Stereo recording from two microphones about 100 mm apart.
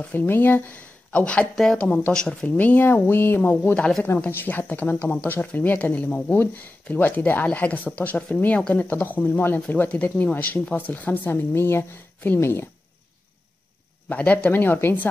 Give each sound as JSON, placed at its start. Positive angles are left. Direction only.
{"t": 0.0, "sound": "speech", "side_deg": 20}
{"t": 14.0, "sound": "speech", "side_deg": 15}